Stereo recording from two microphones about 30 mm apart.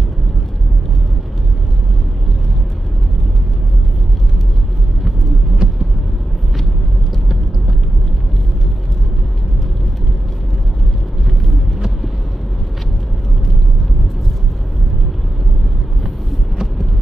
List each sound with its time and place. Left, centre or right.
5.6 s vehicle: right